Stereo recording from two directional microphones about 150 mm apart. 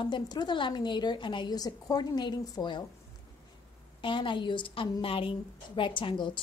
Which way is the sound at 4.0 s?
35° left (ahead or behind).